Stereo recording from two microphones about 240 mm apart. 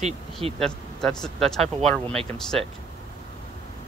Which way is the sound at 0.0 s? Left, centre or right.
Right.